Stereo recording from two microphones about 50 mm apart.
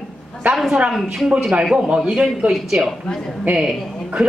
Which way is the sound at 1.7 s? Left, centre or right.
Centre.